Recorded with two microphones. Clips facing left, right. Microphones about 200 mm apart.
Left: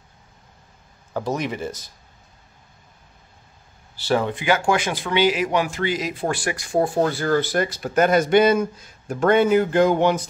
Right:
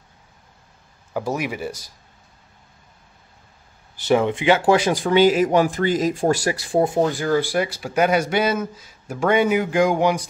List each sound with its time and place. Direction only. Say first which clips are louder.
1.1 s speech: even; 10° right (ahead or behind)
4.0 s speech: right 4 dB; 20° right (ahead or behind)
7.0 s speech: right 1 dB; 15° right (ahead or behind)